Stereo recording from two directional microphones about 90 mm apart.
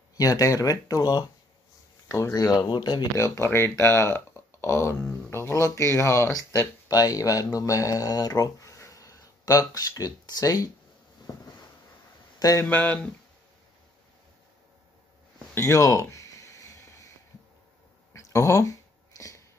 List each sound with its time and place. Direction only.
0.2 s speech: 40° left (ahead or behind)
2.0 s speech: 35° left (ahead or behind)
2.7 s speech: 50° left (ahead or behind)
3.2 s speech: 35° left (ahead or behind)
6.9 s speech: 45° left (ahead or behind)
11.3 s a sound: 45° left (ahead or behind)
12.4 s speech: 40° left (ahead or behind)
12.6 s speech: 20° left (ahead or behind)
15.5 s a sound: 35° left (ahead or behind)
18.1 s a sound: 35° left (ahead or behind)